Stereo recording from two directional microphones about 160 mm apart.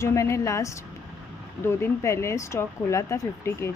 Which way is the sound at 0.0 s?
20° left (ahead or behind).